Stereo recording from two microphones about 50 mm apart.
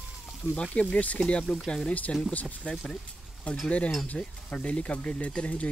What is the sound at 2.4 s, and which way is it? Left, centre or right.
Speech, centre.